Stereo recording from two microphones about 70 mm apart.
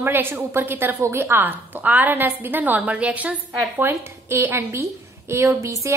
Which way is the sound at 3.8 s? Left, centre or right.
Right.